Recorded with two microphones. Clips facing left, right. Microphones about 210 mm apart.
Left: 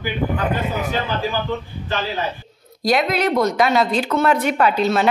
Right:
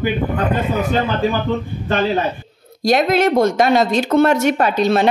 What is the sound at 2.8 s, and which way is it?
Speech, 45° right (ahead or behind).